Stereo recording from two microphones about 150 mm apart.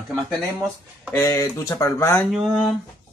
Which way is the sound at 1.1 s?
20° left (ahead or behind).